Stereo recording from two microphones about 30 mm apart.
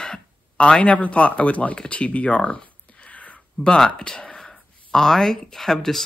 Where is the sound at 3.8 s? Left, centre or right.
Left.